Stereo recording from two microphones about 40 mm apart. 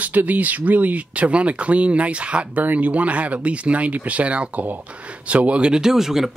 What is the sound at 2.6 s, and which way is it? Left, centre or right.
Speech, right.